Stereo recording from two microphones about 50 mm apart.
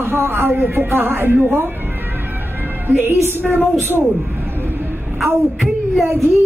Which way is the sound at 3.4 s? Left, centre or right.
Right.